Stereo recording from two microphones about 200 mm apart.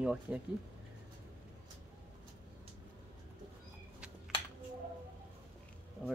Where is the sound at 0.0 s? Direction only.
5° right (ahead or behind).